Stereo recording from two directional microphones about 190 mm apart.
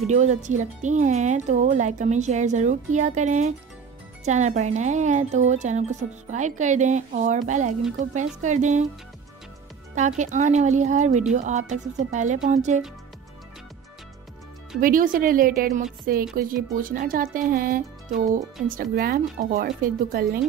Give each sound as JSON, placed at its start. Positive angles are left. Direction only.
{"t": 0.0, "sound": "speech", "side_deg": -40}
{"t": 9.9, "sound": "speech", "side_deg": -40}
{"t": 14.8, "sound": "speech", "side_deg": -45}